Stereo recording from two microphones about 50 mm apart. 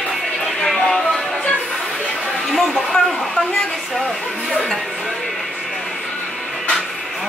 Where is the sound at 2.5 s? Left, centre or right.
Centre.